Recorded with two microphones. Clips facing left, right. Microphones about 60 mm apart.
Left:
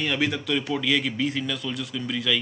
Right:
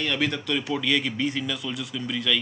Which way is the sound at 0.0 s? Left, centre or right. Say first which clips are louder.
Left 1 dB; centre.